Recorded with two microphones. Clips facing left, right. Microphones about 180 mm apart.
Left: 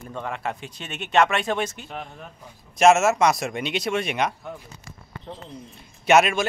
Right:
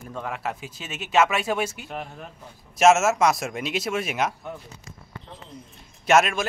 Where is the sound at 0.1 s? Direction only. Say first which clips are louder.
Left 1 dB; 5° right (ahead or behind).